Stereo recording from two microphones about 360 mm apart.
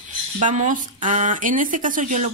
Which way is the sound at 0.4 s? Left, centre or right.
Right.